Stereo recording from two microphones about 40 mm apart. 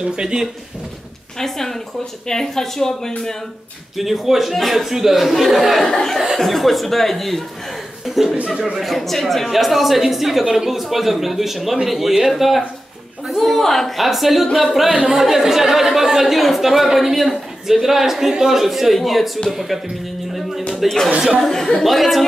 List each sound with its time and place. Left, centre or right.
0.1 s speech: centre
1.4 s speech: centre
3.9 s speech: centre
5.9 s speech: centre
6.3 s a man's voice: centre
14.9 s speech: centre
15.1 s a man's voice: centre
20.3 s music: centre
21.4 s speech: centre
21.8 s speech: centre